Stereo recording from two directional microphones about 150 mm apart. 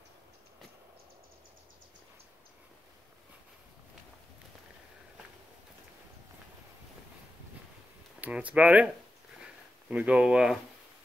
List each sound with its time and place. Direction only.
8.2 s speech: 10° right (ahead or behind)